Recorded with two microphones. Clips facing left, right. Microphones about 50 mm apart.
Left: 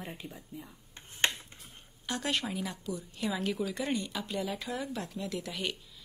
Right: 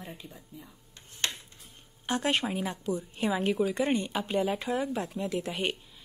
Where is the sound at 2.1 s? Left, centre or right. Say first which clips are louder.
Right 5 dB; right.